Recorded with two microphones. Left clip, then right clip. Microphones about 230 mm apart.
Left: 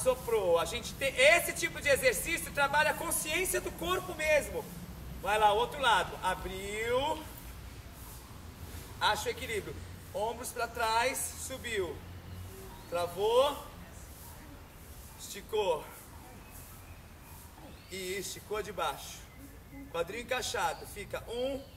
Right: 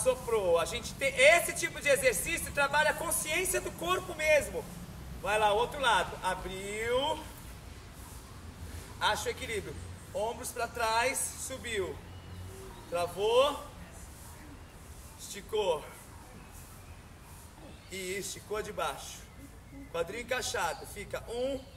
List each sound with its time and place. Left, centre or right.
0.0 s speech: centre
9.0 s speech: centre
12.9 s speech: centre
15.2 s speech: centre
17.9 s speech: centre